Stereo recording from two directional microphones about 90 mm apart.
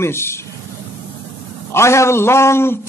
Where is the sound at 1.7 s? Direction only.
30° left (ahead or behind).